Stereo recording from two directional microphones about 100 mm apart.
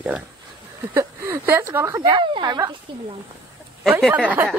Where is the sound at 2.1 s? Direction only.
55° right (ahead or behind).